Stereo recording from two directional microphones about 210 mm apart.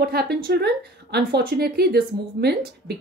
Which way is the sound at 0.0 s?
50° right (ahead or behind).